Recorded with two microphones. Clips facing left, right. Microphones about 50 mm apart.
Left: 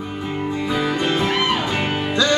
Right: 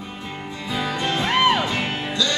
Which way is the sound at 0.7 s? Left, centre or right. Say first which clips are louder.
Left 2 dB; centre.